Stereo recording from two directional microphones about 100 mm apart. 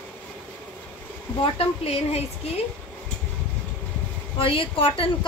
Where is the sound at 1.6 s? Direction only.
85° left.